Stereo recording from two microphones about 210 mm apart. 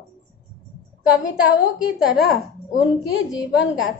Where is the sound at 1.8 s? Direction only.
Centre (ahead or behind).